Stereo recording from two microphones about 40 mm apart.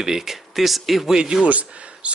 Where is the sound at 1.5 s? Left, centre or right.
Right.